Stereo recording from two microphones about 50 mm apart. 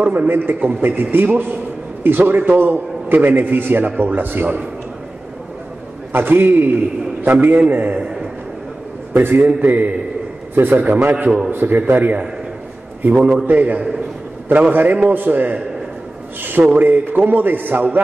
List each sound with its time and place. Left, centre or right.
0.3 s a man's voice: right
0.6 s a man's voice: right
2.0 s a man's voice: right
6.1 s a man's voice: right
9.1 s a man's voice: right